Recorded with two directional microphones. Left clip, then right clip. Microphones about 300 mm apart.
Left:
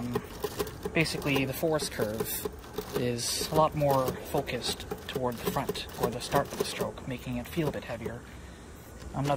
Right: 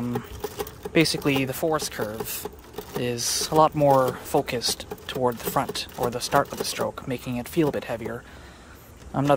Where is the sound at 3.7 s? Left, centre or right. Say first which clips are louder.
Right 8 dB; right.